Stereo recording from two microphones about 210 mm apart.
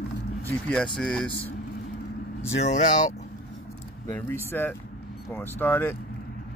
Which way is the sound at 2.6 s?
35° left (ahead or behind).